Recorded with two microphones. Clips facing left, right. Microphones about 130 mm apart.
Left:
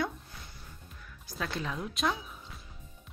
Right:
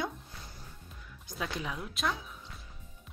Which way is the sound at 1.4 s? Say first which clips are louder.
Left 2 dB; 10° right (ahead or behind).